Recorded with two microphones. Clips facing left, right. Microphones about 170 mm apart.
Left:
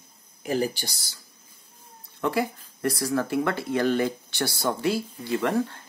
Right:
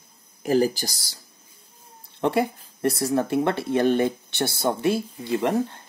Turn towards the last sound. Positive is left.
turn(degrees=-20)  # may be behind; listen again after turning